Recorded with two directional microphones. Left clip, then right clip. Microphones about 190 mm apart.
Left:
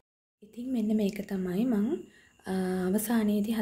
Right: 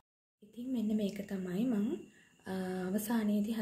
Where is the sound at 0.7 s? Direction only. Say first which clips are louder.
Left 6 dB; 30° left (ahead or behind).